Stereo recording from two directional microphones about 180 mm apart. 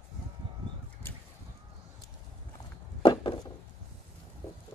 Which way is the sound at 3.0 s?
30° left (ahead or behind).